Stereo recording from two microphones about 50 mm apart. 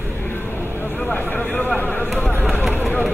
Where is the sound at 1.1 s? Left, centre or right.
Left.